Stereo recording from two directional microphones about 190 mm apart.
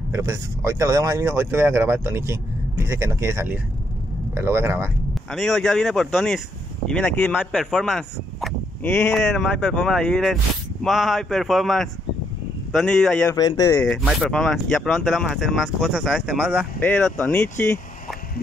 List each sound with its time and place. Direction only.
0.1 s speech: 15° right (ahead or behind)
5.1 s speech: centre (ahead or behind); by 13.8 s 20° left (ahead or behind)
13.8 s speech: centre (ahead or behind)
16.8 s speech: 10° left (ahead or behind)